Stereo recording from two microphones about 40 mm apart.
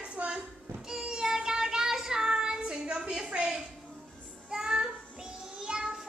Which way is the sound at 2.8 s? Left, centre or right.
Right.